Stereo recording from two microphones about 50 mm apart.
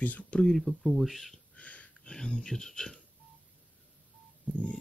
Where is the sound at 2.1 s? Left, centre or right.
Centre.